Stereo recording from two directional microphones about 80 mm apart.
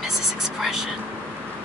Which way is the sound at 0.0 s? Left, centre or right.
Centre.